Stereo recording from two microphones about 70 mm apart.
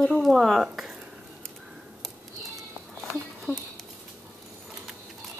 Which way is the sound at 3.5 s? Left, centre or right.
Right.